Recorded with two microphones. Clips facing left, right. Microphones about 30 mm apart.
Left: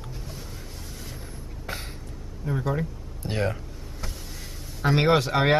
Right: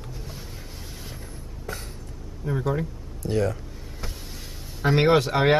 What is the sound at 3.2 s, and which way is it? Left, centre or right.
Speech, left.